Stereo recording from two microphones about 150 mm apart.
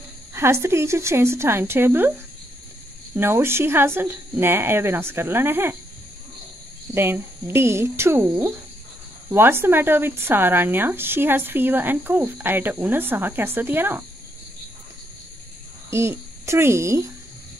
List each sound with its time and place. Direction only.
0.3 s speech: 15° right (ahead or behind)
3.2 s speech: 15° right (ahead or behind)
6.9 s speech: 15° right (ahead or behind)
15.9 s speech: 20° right (ahead or behind)